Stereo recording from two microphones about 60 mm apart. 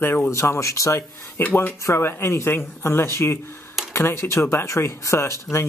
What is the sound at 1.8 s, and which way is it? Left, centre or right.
Speech, left.